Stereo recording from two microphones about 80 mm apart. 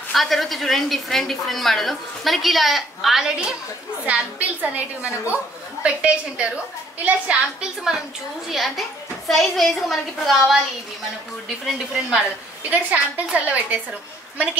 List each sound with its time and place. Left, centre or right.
0.1 s a woman's voice: centre
12.6 s a woman's voice: centre